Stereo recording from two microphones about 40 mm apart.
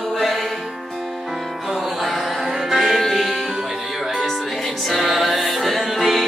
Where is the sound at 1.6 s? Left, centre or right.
Centre.